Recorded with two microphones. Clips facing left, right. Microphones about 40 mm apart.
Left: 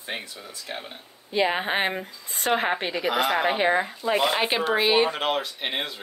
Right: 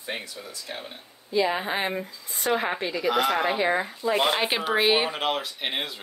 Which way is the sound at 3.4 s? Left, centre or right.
Left.